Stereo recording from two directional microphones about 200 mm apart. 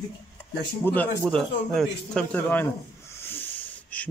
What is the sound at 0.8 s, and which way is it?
Speech, 10° left (ahead or behind).